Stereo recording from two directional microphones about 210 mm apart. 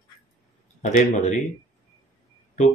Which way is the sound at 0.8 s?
35° left (ahead or behind).